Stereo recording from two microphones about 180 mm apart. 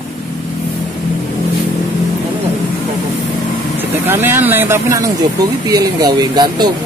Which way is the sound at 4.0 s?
10° right (ahead or behind).